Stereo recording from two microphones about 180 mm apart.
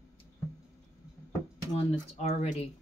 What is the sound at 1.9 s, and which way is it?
Speech, 35° left (ahead or behind).